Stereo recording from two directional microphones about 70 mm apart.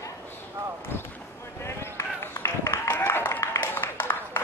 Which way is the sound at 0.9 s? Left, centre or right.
Left.